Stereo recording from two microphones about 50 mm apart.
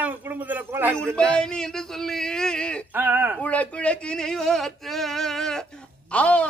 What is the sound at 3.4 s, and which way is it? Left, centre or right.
Speech, left.